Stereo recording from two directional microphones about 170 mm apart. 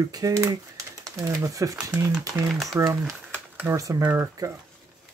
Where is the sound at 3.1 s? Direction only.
10° right (ahead or behind).